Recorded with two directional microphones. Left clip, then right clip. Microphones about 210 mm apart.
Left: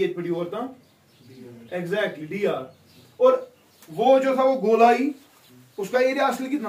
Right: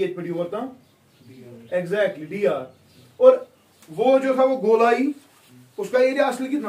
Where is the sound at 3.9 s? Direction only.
Centre (ahead or behind).